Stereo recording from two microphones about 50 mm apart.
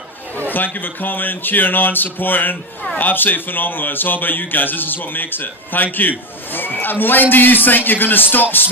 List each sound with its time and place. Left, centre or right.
0.4 s a man's voice: left